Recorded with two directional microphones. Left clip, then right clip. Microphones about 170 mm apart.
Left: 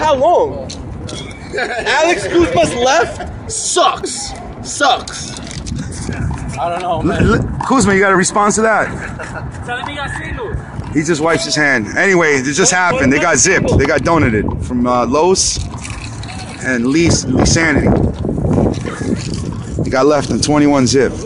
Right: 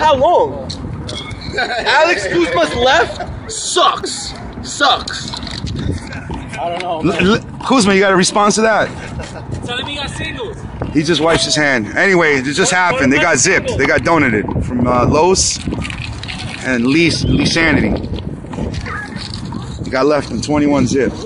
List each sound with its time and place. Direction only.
0.0 s speech: centre (ahead or behind)
1.5 s speech: centre (ahead or behind)
6.6 s speech: centre (ahead or behind)
7.3 s speech: 15° right (ahead or behind)
9.7 s speech: 15° left (ahead or behind)
11.0 s speech: 5° right (ahead or behind)
16.6 s speech: centre (ahead or behind)
18.5 s a sound: centre (ahead or behind)
19.9 s speech: 25° left (ahead or behind)
20.2 s speech: centre (ahead or behind)
20.5 s speech: 40° left (ahead or behind)